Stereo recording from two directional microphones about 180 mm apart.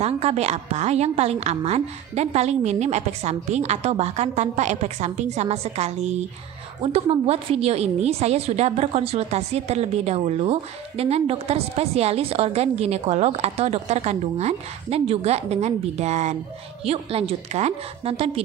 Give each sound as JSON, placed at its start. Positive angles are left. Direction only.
{"t": 0.0, "sound": "a woman's voice", "side_deg": -35}